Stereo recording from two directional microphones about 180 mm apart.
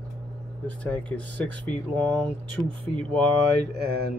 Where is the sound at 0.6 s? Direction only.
10° left (ahead or behind).